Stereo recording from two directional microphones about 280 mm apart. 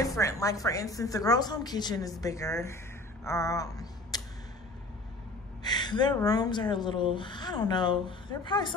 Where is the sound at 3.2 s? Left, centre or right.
Centre.